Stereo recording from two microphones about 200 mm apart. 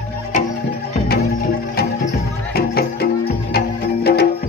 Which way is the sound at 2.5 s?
50° left (ahead or behind).